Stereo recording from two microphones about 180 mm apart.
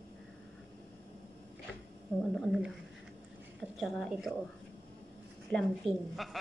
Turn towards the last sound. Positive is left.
turn(degrees=0)  # may be behind; listen again after turning